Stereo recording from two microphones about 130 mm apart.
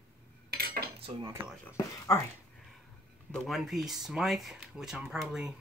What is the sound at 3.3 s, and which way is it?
Speech, 5° left (ahead or behind).